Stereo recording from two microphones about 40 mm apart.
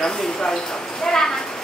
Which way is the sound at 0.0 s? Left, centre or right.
Centre.